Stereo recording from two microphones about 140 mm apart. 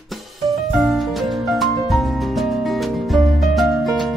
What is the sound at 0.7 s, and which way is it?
Music, centre (ahead or behind).